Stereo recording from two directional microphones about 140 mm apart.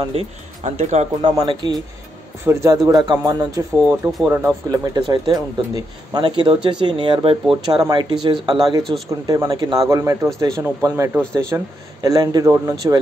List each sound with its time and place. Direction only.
0.1 s speech: 45° right (ahead or behind)
1.2 s speech: 30° right (ahead or behind)
2.4 s a man's voice: 20° right (ahead or behind)
4.3 s speech: 15° right (ahead or behind)
4.6 s a man's voice: 25° right (ahead or behind)